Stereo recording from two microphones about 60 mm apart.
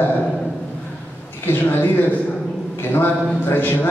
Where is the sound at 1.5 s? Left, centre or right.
Left.